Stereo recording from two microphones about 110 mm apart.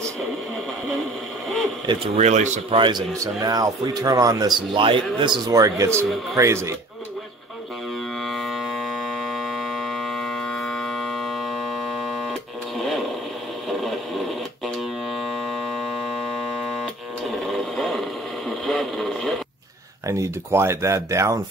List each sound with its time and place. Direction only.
2.1 s speech: 90° right
3.3 s a man's voice: 35° right (ahead or behind)
5.5 s speech: 30° right (ahead or behind)
8.3 s hum: centre (ahead or behind)
13.7 s a sound: centre (ahead or behind)
18.5 s radio: centre (ahead or behind)
20.1 s speech: 25° right (ahead or behind)